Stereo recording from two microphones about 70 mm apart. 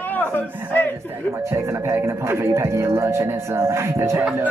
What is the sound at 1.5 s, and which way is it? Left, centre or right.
Speech, right.